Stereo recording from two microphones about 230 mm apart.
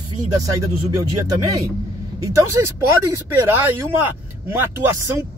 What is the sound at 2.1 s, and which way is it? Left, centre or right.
Speech, centre.